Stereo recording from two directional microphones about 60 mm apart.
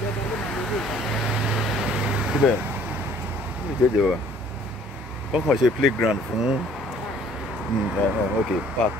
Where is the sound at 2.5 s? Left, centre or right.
Right.